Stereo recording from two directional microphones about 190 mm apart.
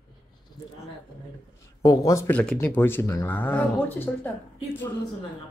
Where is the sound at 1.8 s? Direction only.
20° left (ahead or behind).